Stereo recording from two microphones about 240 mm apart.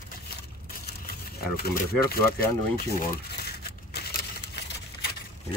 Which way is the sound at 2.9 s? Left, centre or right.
Left.